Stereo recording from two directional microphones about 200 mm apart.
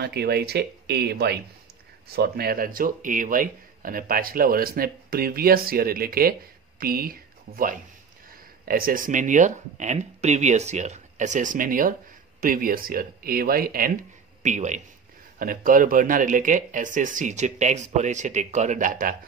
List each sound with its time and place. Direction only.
0.0 s speech: 55° right (ahead or behind)